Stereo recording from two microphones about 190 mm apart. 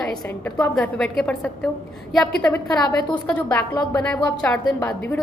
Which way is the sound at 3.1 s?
10° left (ahead or behind).